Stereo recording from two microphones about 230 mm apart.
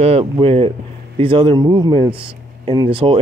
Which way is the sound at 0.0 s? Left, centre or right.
Right.